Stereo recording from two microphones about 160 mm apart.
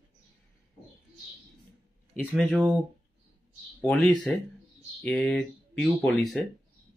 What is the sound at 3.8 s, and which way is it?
Speech, 5° left (ahead or behind).